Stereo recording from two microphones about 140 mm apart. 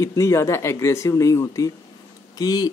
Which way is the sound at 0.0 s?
20° left (ahead or behind).